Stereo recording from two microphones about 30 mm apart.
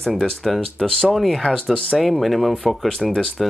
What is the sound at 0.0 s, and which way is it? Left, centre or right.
Speech, centre.